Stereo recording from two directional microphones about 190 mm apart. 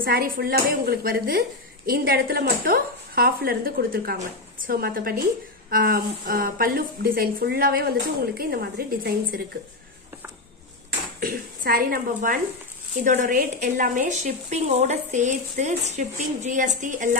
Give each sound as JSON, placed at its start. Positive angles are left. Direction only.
{"t": 0.0, "sound": "a woman's voice", "side_deg": -50}
{"t": 11.1, "sound": "a woman's voice", "side_deg": -50}